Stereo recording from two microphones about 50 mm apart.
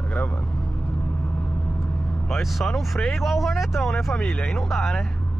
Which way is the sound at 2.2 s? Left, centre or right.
Centre.